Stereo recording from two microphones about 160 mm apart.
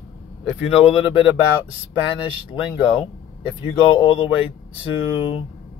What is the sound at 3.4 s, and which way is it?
Speech, 30° left (ahead or behind).